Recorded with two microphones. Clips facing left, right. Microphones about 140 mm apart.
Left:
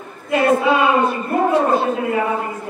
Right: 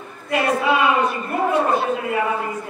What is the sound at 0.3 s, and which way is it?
A man's voice, 25° left (ahead or behind).